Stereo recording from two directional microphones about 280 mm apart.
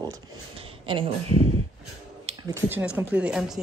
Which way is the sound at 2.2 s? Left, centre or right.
Centre.